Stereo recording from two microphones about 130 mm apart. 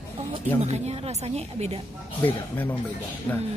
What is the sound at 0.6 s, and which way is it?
Speech, 55° right (ahead or behind).